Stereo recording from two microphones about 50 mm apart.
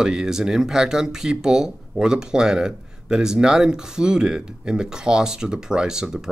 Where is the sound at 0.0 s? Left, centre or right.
Centre.